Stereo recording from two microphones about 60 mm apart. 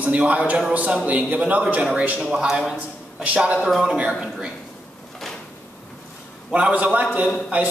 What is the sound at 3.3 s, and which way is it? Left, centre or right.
Speech, right.